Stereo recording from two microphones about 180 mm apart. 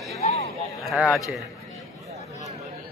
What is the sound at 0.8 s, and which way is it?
Speech, 5° right (ahead or behind).